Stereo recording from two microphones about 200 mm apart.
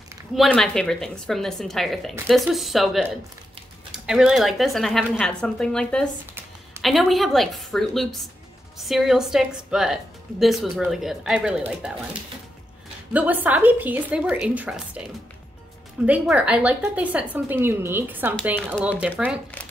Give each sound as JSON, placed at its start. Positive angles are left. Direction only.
{"t": 0.4, "sound": "speech", "side_deg": 5}
{"t": 13.1, "sound": "a woman's voice", "side_deg": -10}
{"t": 16.1, "sound": "a woman's voice", "side_deg": -5}